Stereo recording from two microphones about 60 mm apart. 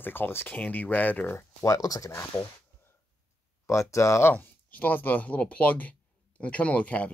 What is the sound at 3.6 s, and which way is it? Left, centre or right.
Speech, left.